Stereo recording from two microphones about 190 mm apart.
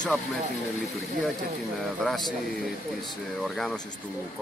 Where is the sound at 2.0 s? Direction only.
Centre (ahead or behind).